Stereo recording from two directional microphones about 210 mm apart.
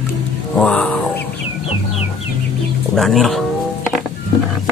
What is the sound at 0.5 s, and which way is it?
Speech, 5° left (ahead or behind).